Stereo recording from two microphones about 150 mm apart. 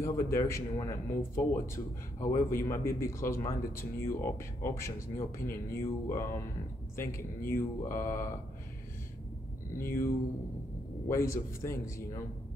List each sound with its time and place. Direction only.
0.0 s speech: 20° left (ahead or behind)
9.8 s speech: 15° left (ahead or behind)